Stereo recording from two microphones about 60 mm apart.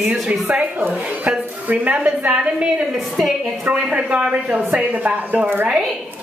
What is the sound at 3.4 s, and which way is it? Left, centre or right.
Speech, right.